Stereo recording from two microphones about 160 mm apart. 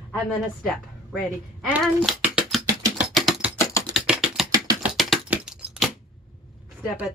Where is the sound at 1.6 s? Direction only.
5° right (ahead or behind).